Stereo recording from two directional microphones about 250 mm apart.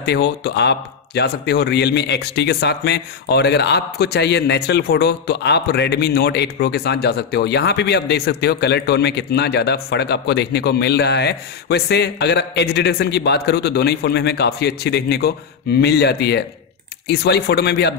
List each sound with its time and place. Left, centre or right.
0.0 s speech: left